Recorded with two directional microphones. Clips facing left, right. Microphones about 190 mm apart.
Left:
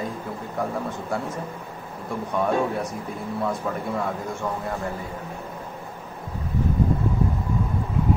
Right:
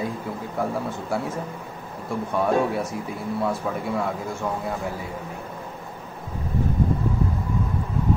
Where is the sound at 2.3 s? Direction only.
5° right (ahead or behind).